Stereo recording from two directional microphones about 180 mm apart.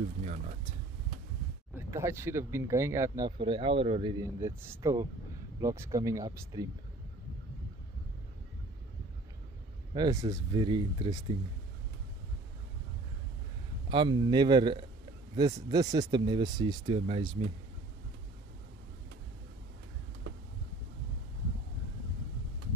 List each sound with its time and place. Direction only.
0.2 s a sound: 40° right (ahead or behind)
1.8 s speech: 15° right (ahead or behind)
9.9 s speech: 20° right (ahead or behind)
13.8 s speech: 25° right (ahead or behind)